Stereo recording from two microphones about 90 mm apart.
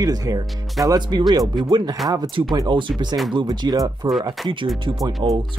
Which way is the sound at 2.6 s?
60° right (ahead or behind).